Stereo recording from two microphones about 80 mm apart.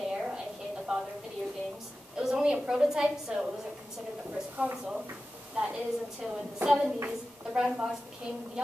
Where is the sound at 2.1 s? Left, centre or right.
Centre.